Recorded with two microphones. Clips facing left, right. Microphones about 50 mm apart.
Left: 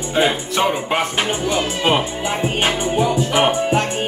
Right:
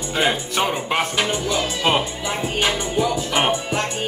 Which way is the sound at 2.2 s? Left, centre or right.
Left.